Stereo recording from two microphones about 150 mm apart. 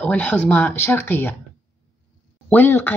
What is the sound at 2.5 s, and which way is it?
Speech, 15° left (ahead or behind).